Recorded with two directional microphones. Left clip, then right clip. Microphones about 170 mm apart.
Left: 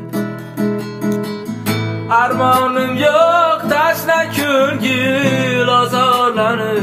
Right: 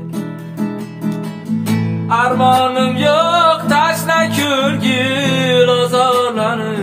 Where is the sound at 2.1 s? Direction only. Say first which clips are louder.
Even; 10° left (ahead or behind).